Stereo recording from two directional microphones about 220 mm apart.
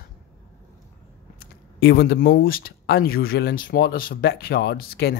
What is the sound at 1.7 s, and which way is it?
Speech, 45° left (ahead or behind).